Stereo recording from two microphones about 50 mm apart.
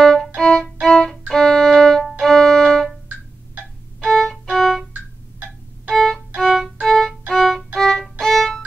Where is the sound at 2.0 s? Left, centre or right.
Centre.